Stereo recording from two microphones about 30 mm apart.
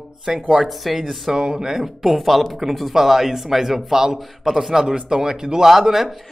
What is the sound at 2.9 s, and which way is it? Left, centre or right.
Speech, centre.